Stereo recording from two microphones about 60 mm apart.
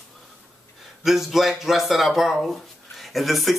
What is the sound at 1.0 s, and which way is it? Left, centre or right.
Speech, centre.